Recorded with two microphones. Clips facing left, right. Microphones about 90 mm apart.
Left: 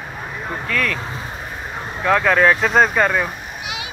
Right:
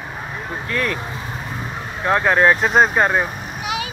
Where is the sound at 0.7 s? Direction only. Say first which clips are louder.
Even; 25° right (ahead or behind).